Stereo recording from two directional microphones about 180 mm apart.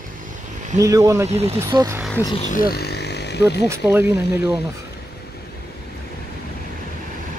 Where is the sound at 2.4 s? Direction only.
50° left (ahead or behind); by 3.6 s 70° left (ahead or behind).